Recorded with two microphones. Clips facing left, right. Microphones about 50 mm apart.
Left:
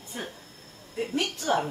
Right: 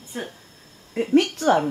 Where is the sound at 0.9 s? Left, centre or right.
Right.